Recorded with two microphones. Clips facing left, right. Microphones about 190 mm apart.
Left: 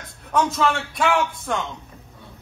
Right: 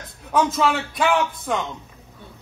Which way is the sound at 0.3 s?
Centre (ahead or behind).